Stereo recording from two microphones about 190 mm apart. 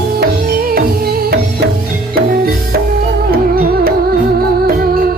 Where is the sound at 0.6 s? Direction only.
50° right (ahead or behind).